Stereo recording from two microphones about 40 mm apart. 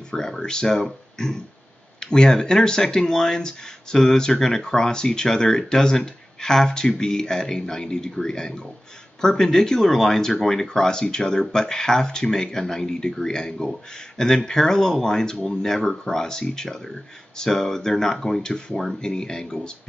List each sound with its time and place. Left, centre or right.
0.1 s speech: centre
2.0 s a sound: centre
2.3 s speech: centre